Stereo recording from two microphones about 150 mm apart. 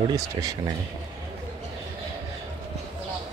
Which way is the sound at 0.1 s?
25° right (ahead or behind).